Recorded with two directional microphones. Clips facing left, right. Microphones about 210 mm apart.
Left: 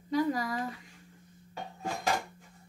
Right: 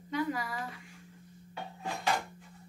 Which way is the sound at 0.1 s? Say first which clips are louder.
Left 4 dB; 40° left (ahead or behind).